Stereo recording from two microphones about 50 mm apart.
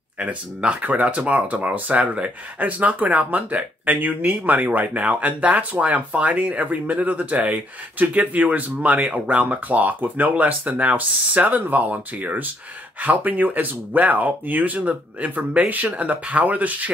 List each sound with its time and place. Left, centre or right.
0.2 s speech: right